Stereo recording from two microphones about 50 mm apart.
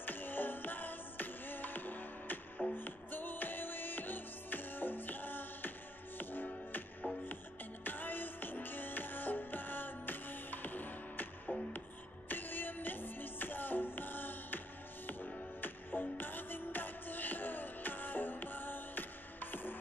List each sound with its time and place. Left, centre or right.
0.0 s music: left
12.3 s music: left